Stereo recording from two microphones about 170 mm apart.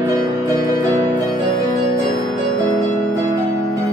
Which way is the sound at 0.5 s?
20° right (ahead or behind).